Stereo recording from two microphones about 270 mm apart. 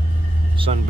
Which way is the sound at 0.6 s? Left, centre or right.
Centre.